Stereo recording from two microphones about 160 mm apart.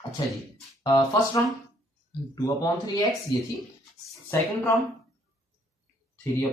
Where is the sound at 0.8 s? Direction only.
25° left (ahead or behind).